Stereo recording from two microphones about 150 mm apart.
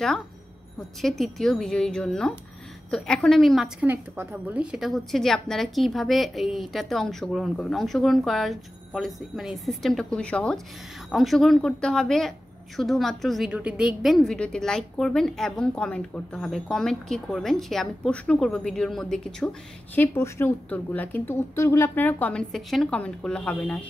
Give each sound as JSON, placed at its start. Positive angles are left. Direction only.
{"t": 0.7, "sound": "a woman's voice", "side_deg": 0}
{"t": 3.8, "sound": "a woman's voice", "side_deg": -15}
{"t": 20.0, "sound": "a woman's voice", "side_deg": 15}